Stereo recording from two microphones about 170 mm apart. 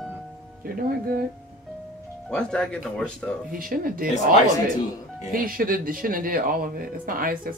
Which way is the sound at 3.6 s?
55° right (ahead or behind).